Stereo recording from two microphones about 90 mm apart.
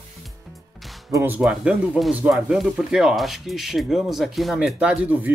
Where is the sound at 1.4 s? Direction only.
5° right (ahead or behind).